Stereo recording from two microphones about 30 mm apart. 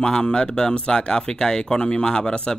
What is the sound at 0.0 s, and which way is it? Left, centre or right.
Speech, left.